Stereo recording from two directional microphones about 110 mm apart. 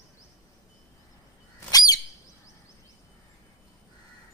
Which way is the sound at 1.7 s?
35° left (ahead or behind).